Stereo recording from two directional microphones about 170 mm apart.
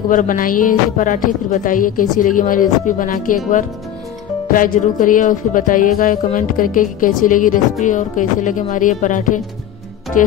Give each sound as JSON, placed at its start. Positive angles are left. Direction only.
{"t": 0.1, "sound": "a woman's voice", "side_deg": 50}
{"t": 4.5, "sound": "a woman's voice", "side_deg": 55}